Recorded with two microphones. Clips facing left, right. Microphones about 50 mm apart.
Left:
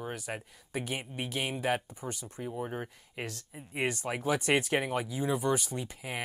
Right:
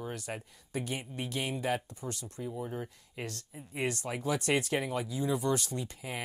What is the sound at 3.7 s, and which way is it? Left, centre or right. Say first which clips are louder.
Speech: left 2 dB; left.